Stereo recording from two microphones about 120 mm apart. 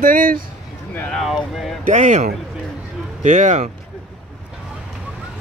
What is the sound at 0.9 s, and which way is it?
Speech, 10° left (ahead or behind).